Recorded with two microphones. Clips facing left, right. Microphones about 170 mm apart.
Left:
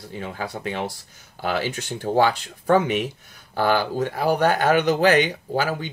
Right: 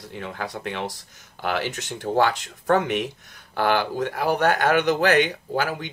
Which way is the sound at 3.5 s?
40° left (ahead or behind).